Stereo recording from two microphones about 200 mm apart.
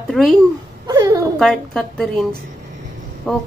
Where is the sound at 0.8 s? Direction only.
20° right (ahead or behind).